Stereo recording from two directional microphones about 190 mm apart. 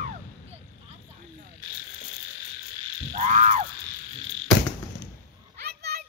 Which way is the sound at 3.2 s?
40° right (ahead or behind).